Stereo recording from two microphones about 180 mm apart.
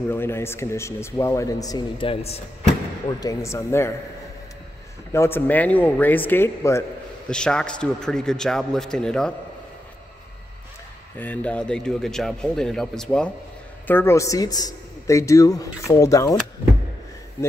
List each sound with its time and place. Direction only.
0.1 s speech: 15° left (ahead or behind); by 2.4 s 30° left (ahead or behind)
3.2 s speech: 20° left (ahead or behind)
5.1 s speech: 15° left (ahead or behind)
11.1 s speech: 10° left (ahead or behind)